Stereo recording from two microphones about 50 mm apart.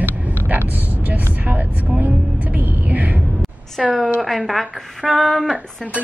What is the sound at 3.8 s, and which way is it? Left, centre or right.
Speech, centre.